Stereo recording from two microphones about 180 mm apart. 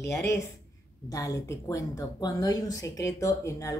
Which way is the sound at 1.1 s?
20° left (ahead or behind).